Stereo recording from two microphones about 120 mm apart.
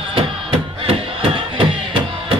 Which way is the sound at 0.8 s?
50° right (ahead or behind).